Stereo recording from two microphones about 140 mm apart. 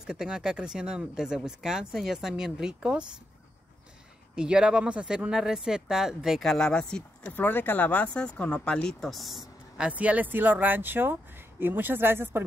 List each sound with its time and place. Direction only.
0.0 s speech: 5° right (ahead or behind)
4.4 s speech: 5° right (ahead or behind)